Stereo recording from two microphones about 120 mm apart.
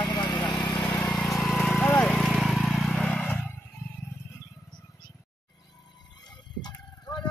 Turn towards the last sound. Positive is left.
turn(degrees=35)  # may be behind; listen again after turning